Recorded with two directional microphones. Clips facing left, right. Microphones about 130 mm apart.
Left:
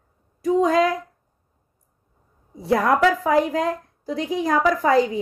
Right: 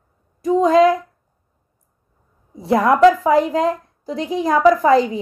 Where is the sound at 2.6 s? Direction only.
20° right (ahead or behind).